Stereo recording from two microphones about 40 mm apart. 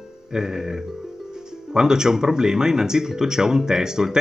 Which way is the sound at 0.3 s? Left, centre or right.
Centre.